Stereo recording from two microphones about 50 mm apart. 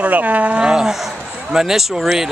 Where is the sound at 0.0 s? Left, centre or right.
Right.